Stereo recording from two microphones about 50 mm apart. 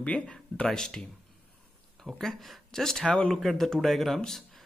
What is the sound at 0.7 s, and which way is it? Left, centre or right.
Speech, centre.